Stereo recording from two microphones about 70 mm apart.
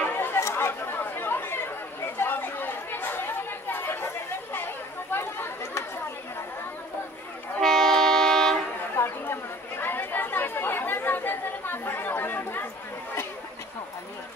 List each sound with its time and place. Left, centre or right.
0.0 s chatter: left
7.6 s train: centre
8.9 s chatter: left